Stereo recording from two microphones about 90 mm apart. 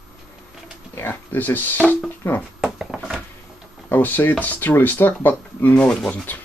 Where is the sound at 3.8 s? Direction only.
20° left (ahead or behind).